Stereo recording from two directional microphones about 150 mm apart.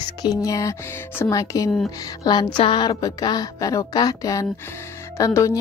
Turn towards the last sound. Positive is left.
turn(degrees=20)  # may be behind; listen again after turning